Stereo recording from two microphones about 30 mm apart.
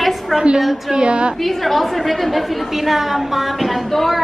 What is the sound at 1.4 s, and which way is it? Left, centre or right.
A woman's voice, centre.